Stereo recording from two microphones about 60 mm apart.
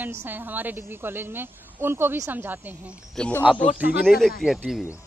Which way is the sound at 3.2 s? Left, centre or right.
Centre.